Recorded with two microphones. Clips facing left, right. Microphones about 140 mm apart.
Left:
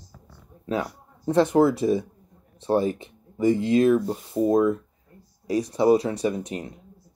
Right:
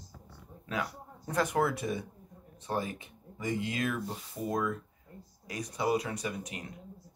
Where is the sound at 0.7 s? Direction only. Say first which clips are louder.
Left 8 dB; 30° left (ahead or behind).